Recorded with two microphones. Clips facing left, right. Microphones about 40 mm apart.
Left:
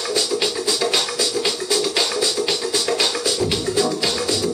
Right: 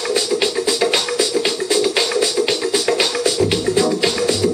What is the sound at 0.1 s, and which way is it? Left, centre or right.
Music, centre.